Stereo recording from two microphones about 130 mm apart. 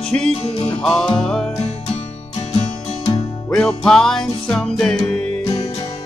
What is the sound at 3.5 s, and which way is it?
Music, 5° left (ahead or behind).